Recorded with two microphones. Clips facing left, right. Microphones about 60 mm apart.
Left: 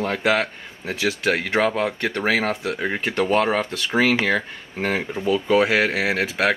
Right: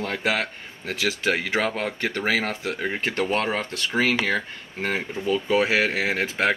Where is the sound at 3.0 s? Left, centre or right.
Centre.